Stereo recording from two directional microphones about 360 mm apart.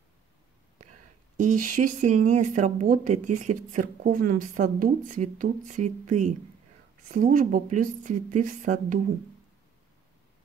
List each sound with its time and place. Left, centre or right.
1.3 s speech: right